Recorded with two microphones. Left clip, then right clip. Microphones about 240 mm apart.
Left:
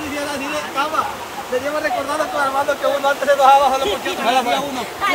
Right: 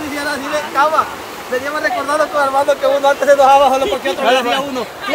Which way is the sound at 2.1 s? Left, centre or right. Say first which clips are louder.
Right 5 dB; right.